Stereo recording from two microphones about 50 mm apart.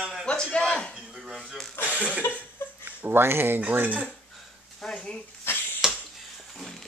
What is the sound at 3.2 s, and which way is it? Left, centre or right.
Speech, right.